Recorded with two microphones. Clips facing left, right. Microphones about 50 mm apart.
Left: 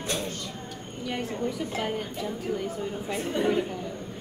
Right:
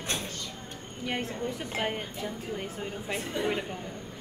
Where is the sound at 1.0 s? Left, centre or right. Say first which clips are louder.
Left 2 dB; right.